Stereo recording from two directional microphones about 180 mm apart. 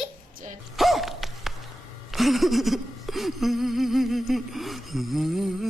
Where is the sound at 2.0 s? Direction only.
Centre (ahead or behind).